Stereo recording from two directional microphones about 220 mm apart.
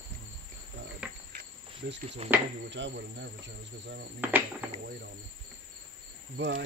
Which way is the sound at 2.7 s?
55° right (ahead or behind).